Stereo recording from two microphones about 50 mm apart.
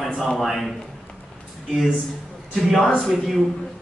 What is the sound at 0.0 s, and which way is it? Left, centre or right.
Speech, centre.